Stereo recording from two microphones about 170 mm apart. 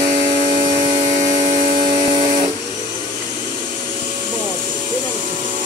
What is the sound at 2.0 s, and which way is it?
Vehicle, 35° right (ahead or behind).